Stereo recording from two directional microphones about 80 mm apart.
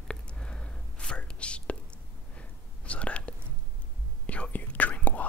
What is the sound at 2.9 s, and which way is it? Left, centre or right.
Whispering, centre.